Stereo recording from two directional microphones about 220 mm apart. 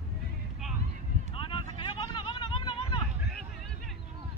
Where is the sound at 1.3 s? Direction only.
25° left (ahead or behind).